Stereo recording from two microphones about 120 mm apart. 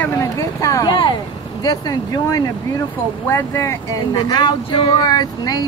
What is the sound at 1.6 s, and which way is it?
Speech, 30° left (ahead or behind).